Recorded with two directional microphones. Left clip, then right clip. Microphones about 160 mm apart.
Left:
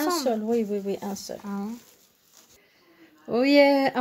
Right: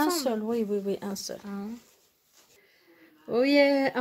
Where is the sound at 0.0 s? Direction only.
40° right (ahead or behind).